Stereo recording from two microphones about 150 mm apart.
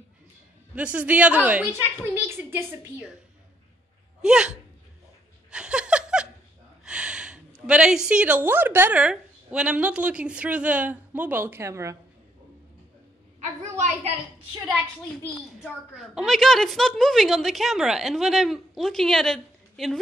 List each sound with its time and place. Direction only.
0.7 s a woman's voice: 10° right (ahead or behind)
4.2 s a woman's voice: 5° right (ahead or behind)
5.5 s a sound: 5° right (ahead or behind)
6.8 s a woman's voice: 5° right (ahead or behind)
13.4 s a woman's voice: 50° right (ahead or behind)
15.6 s a woman's voice: centre (ahead or behind)